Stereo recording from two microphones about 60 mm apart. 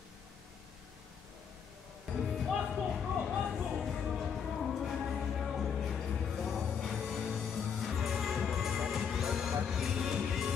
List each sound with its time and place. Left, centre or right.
2.1 s music: centre